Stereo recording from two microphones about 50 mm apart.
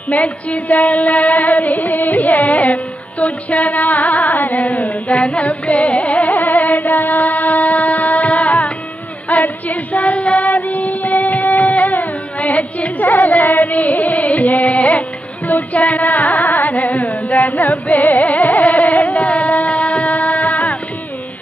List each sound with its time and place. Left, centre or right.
0.1 s music: left
5.9 s carnatic music: left
9.3 s child singing: left